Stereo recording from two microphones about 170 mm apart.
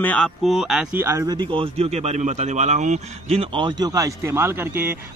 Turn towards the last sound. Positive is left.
turn(degrees=-15)  # may be behind; listen again after turning